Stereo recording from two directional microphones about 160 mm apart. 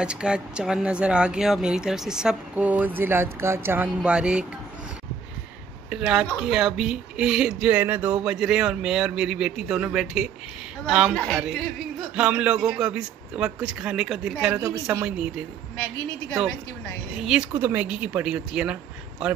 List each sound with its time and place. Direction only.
0.0 s speech: 5° right (ahead or behind)
5.9 s speech: 5° right (ahead or behind)
12.2 s speech: 5° right (ahead or behind)
14.6 s a woman's voice: 20° right (ahead or behind)
15.0 s speech: 5° right (ahead or behind)
16.4 s a woman's voice: 5° left (ahead or behind)
17.3 s speech: 10° right (ahead or behind)